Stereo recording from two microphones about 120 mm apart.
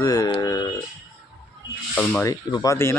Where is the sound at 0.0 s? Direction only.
30° left (ahead or behind).